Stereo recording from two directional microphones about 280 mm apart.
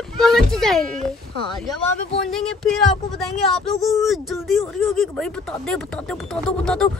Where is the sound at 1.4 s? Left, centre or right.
Centre.